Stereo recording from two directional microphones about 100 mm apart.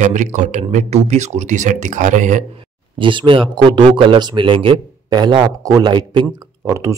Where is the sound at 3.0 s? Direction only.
55° right (ahead or behind).